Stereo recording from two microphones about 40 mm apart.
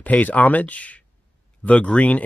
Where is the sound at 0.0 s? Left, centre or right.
Left.